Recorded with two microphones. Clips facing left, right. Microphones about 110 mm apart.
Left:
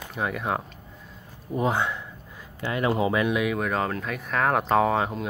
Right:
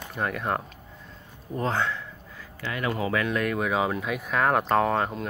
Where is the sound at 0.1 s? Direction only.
5° left (ahead or behind); by 3.3 s 20° left (ahead or behind).